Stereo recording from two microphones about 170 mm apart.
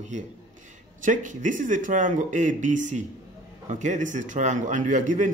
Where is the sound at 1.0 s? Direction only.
50° right (ahead or behind).